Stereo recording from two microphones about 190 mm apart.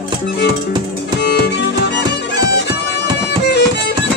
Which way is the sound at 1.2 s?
60° left (ahead or behind).